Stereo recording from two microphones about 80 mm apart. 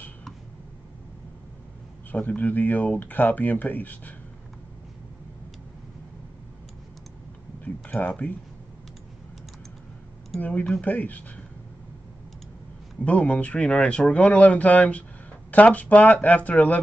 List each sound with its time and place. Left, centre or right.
2.1 s speech: centre
7.6 s a sound: centre
10.4 s speech: centre
13.0 s speech: centre